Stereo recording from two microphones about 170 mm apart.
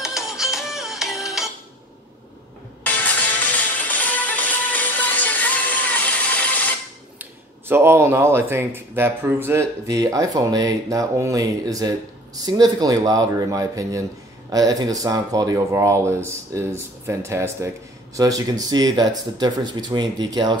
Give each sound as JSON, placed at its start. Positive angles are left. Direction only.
{"t": 0.0, "sound": "music", "side_deg": 0}
{"t": 2.8, "sound": "music", "side_deg": 10}
{"t": 7.2, "sound": "speech", "side_deg": -15}